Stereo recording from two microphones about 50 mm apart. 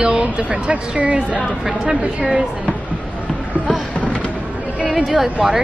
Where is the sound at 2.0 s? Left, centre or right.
Right.